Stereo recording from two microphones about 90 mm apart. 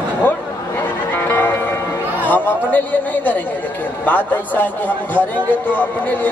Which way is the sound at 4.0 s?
20° left (ahead or behind).